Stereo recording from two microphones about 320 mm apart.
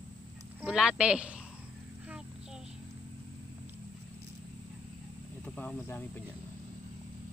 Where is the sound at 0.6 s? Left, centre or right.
Centre.